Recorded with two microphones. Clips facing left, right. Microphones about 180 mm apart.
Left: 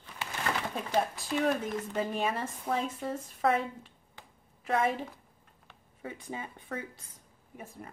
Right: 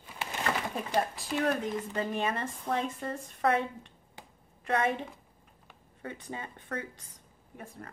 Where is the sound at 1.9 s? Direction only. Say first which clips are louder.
Left 2 dB; 5° left (ahead or behind).